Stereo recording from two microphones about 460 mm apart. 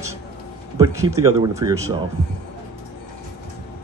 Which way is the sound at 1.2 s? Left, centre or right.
Centre.